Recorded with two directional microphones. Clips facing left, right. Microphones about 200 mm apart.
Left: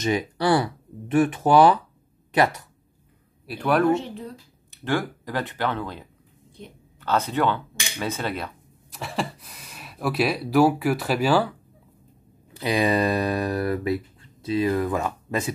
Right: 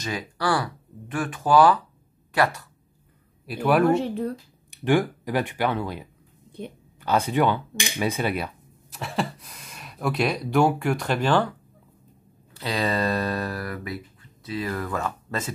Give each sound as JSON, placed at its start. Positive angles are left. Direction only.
{"t": 0.0, "sound": "speech", "side_deg": 20}
{"t": 3.4, "sound": "speech", "side_deg": -5}
{"t": 8.9, "sound": "speech", "side_deg": 0}
{"t": 12.5, "sound": "speech", "side_deg": 15}